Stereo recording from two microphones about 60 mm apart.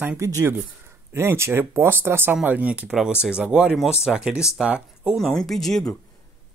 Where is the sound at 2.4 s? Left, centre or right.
Right.